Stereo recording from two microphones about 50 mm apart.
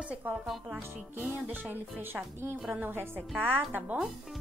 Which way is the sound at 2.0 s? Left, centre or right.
Right.